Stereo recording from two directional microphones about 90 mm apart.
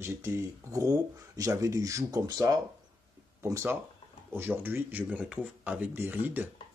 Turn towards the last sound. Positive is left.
turn(degrees=-20)  # may be behind; listen again after turning